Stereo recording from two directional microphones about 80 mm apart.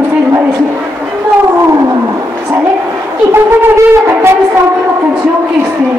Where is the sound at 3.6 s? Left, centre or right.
Right.